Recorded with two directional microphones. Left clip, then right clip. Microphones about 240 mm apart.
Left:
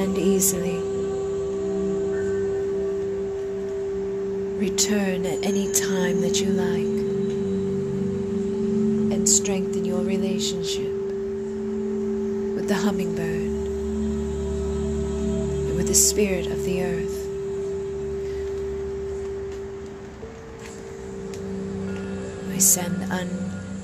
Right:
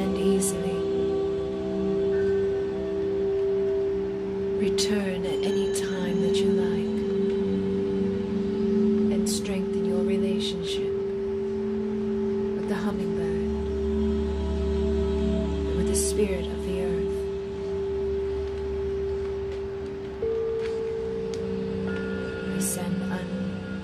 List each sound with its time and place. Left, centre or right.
0.0 s music: left
4.6 s speech: left
9.1 s music: left
12.6 s music: left
15.9 s music: left